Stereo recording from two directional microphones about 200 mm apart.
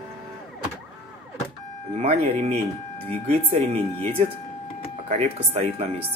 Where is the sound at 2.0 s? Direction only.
30° right (ahead or behind).